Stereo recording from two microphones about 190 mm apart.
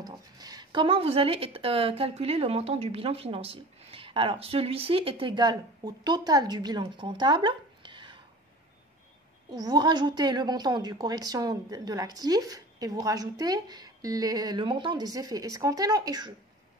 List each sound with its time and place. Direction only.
0.0 s speech: 20° right (ahead or behind)
9.5 s a woman's voice: 20° right (ahead or behind)